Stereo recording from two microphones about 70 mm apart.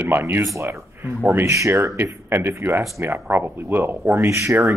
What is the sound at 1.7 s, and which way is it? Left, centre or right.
Speech, right.